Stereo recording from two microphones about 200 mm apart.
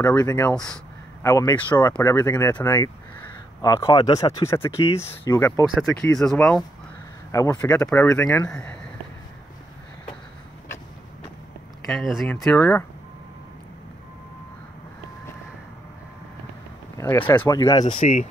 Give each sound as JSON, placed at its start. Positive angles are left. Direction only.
{"t": 0.0, "sound": "speech", "side_deg": 15}
{"t": 0.5, "sound": "speech", "side_deg": 5}
{"t": 1.2, "sound": "speech", "side_deg": 15}
{"t": 5.8, "sound": "speech", "side_deg": 5}
{"t": 7.2, "sound": "speech", "side_deg": 15}
{"t": 11.8, "sound": "speech", "side_deg": 0}
{"t": 16.9, "sound": "a sound", "side_deg": 10}
{"t": 17.5, "sound": "speech", "side_deg": 15}